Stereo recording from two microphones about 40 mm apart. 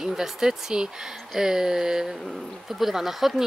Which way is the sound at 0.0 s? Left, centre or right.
Centre.